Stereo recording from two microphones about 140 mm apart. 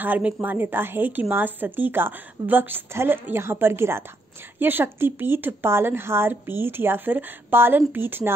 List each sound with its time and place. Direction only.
0.0 s speech: 15° right (ahead or behind)